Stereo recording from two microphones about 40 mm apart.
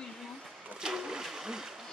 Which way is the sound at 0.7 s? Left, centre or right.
Centre.